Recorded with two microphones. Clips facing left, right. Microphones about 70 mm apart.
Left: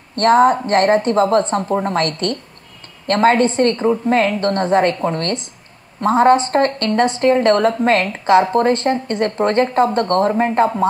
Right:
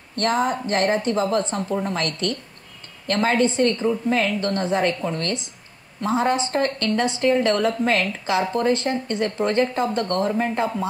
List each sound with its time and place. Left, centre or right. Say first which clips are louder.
0.1 s a woman's voice: left 10 dB; left